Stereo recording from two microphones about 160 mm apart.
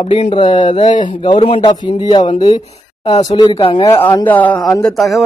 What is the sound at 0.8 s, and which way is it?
Speech, 50° left (ahead or behind).